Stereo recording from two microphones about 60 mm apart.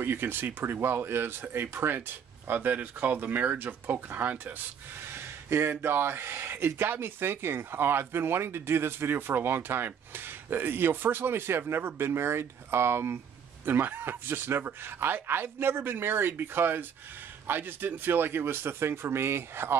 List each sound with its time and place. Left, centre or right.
0.0 s speech: right
5.0 s a sound: right
5.9 s speech: right